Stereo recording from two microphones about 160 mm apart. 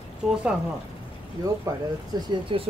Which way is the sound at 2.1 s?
25° right (ahead or behind).